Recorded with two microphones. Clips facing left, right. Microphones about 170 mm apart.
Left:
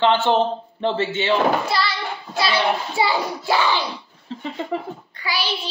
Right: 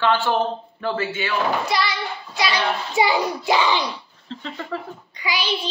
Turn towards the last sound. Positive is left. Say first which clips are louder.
# even
turn(degrees=-15)  # may be behind; listen again after turning